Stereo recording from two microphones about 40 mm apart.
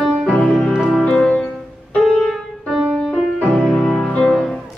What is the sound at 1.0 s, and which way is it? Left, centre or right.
Music, centre.